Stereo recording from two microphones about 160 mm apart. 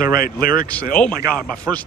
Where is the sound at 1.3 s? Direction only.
5° left (ahead or behind).